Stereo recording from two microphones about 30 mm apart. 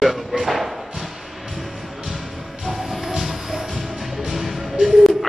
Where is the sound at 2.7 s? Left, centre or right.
Centre.